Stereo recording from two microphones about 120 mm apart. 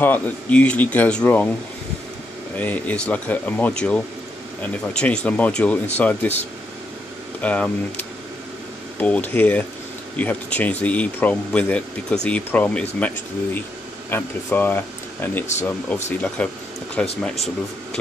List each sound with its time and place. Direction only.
0.0 s speech: 15° left (ahead or behind)
2.5 s speech: 15° left (ahead or behind)
7.4 s speech: 10° left (ahead or behind)